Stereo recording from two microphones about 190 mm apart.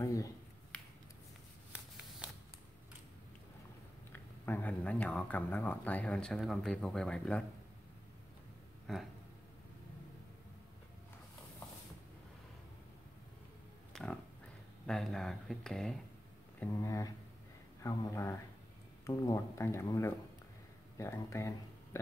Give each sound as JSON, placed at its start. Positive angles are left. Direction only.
{"t": 0.0, "sound": "speech", "side_deg": 15}
{"t": 4.1, "sound": "speech", "side_deg": 10}
{"t": 13.9, "sound": "speech", "side_deg": 5}
{"t": 16.5, "sound": "speech", "side_deg": 15}